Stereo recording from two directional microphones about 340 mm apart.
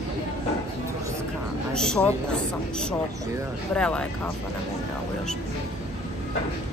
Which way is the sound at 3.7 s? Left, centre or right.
Centre.